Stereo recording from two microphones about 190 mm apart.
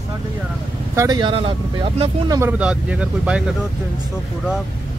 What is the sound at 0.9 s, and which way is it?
Speech, 20° right (ahead or behind).